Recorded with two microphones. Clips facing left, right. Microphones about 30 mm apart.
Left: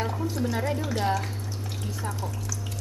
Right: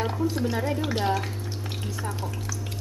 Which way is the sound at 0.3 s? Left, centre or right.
Right.